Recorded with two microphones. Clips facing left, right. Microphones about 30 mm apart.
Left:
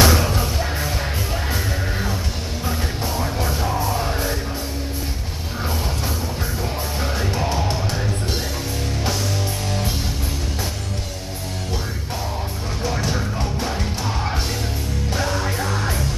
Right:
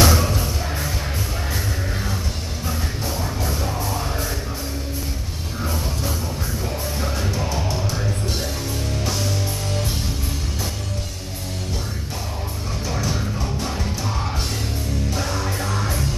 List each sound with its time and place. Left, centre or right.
0.0 s music: left
15.1 s music: centre